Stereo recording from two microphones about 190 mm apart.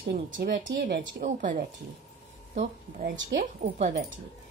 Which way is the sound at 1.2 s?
40° right (ahead or behind).